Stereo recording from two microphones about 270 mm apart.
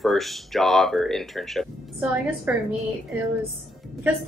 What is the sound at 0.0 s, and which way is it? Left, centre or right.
A woman's voice, centre.